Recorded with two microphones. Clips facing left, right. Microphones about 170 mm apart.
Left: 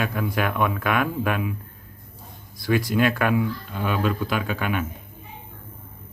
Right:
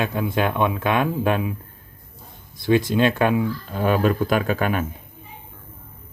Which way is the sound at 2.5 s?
25° right (ahead or behind).